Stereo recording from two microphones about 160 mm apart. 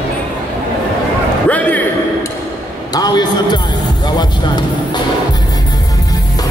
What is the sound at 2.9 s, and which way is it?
A man's voice, 25° left (ahead or behind).